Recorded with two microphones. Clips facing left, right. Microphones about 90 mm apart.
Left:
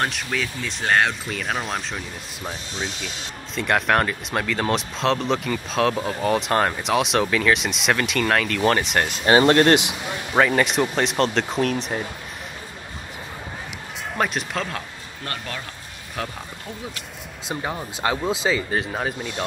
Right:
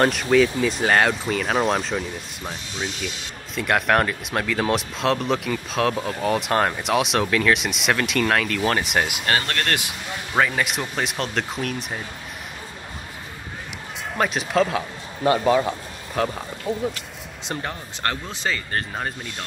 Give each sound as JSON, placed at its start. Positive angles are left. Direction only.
{"t": 0.0, "sound": "speech", "side_deg": 0}
{"t": 3.5, "sound": "speech", "side_deg": 0}
{"t": 9.4, "sound": "speech", "side_deg": 25}
{"t": 10.3, "sound": "speech", "side_deg": 0}
{"t": 14.1, "sound": "speech", "side_deg": 0}
{"t": 17.5, "sound": "speech", "side_deg": 10}